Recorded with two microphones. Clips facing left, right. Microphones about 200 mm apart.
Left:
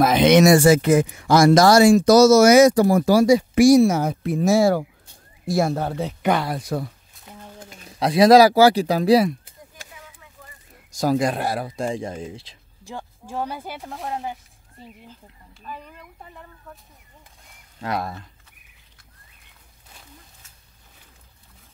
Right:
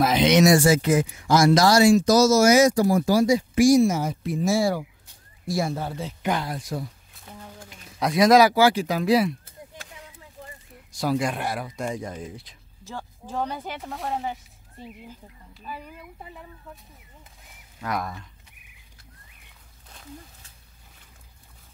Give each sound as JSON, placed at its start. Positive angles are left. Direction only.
{"t": 0.0, "sound": "speech", "side_deg": 50}
{"t": 7.2, "sound": "a sound", "side_deg": 15}
{"t": 7.7, "sound": "speech", "side_deg": 35}
{"t": 10.9, "sound": "speech", "side_deg": 40}
{"t": 12.8, "sound": "speech", "side_deg": 15}
{"t": 17.7, "sound": "speech", "side_deg": 30}